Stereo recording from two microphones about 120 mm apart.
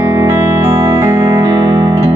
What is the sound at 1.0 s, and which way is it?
Music, 25° right (ahead or behind).